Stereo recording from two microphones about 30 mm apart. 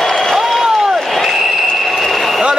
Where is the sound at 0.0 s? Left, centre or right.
Centre.